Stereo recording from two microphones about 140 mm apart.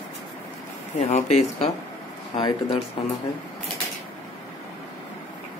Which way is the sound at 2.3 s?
40° left (ahead or behind).